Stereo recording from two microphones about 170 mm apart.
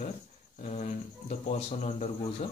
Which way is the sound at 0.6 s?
45° left (ahead or behind).